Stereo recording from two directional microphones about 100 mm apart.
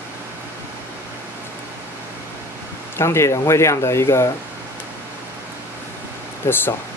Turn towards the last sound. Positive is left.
turn(degrees=20)  # may be behind; listen again after turning